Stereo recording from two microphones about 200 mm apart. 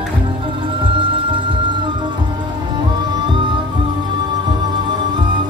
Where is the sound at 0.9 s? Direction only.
25° right (ahead or behind).